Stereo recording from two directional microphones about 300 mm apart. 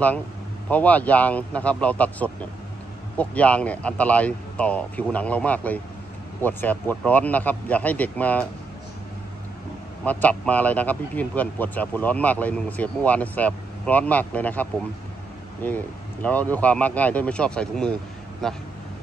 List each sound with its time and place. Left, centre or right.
0.7 s a man's voice: centre
10.0 s a man's voice: centre